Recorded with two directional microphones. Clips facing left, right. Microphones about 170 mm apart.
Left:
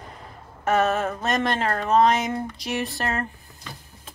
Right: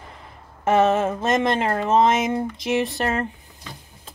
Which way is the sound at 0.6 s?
25° right (ahead or behind).